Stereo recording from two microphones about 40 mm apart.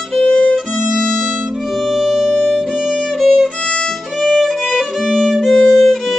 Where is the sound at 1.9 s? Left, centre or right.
Centre.